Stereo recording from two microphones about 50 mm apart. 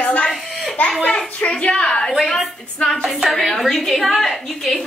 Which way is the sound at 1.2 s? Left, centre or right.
Left.